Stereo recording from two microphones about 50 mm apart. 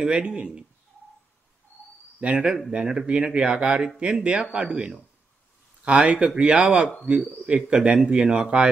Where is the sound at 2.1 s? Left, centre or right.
Right.